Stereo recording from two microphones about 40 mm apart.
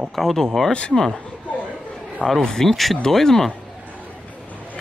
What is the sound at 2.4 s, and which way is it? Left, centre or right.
A man's voice, centre.